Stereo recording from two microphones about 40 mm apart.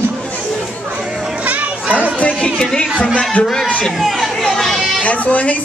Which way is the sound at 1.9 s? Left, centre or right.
Left.